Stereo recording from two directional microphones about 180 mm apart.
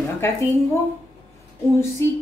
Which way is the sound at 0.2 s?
15° left (ahead or behind).